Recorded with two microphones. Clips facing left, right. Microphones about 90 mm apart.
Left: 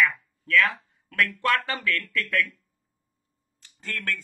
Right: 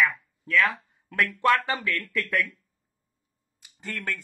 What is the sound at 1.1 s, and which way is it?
Speech, 20° right (ahead or behind).